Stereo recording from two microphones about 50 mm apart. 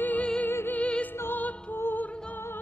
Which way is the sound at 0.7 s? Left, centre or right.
Left.